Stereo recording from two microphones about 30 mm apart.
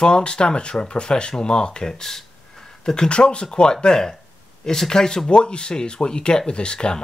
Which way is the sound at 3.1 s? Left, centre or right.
Left.